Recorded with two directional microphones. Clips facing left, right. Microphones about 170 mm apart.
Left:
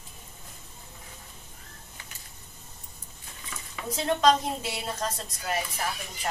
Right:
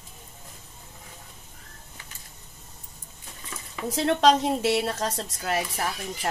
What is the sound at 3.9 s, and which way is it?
A woman's voice, 75° right (ahead or behind).